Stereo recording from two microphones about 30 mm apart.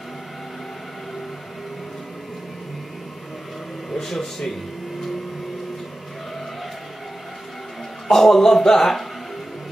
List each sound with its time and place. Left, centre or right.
3.9 s a man's voice: centre
8.1 s a man's voice: centre